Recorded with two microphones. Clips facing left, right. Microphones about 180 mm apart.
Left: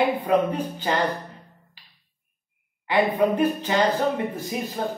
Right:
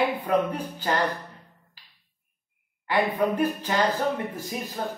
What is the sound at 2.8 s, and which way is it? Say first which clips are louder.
Speech: left 3 dB; 25° left (ahead or behind).